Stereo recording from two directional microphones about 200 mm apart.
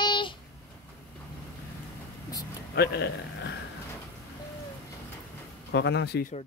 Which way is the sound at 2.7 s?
55° left (ahead or behind).